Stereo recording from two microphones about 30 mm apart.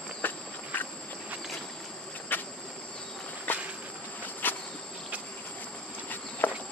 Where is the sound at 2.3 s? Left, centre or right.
Left.